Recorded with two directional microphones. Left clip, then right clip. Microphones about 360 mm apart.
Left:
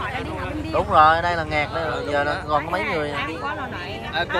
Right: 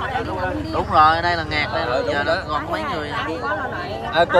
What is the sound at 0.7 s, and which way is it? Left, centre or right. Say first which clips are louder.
Speech: even; centre.